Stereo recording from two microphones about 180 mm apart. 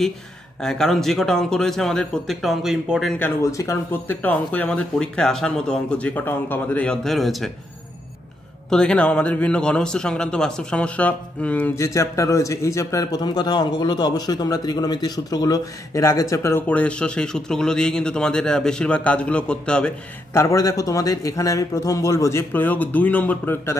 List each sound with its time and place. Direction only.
0.6 s a man's voice: centre (ahead or behind)
3.2 s a man's voice: 15° left (ahead or behind); by 7.5 s centre (ahead or behind)
8.6 s a man's voice: 5° left (ahead or behind)
20.3 s a man's voice: 20° left (ahead or behind)